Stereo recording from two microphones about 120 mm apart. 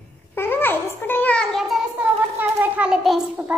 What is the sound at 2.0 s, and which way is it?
A child's voice, 15° right (ahead or behind).